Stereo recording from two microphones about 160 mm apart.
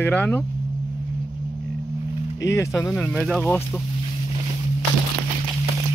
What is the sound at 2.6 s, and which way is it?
Speech, 20° left (ahead or behind).